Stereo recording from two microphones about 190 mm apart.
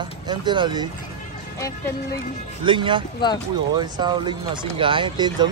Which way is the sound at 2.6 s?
25° right (ahead or behind).